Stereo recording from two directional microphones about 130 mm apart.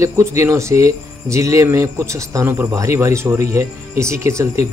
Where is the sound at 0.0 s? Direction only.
20° right (ahead or behind).